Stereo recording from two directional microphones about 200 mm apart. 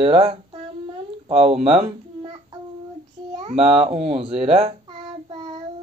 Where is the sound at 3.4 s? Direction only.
30° right (ahead or behind).